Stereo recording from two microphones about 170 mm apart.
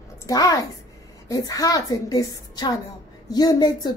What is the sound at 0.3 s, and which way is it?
A child's voice, 20° left (ahead or behind).